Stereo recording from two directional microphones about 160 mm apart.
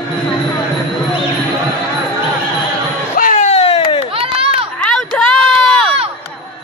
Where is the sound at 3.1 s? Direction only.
55° left (ahead or behind).